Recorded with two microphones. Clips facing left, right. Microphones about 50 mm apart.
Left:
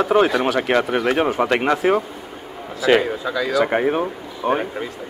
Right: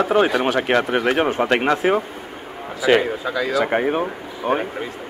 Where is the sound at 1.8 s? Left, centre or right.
Centre.